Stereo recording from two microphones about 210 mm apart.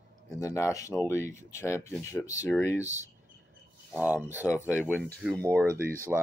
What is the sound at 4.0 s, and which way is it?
Speech, 10° right (ahead or behind).